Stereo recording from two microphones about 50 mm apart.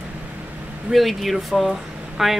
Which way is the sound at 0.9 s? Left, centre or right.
Centre.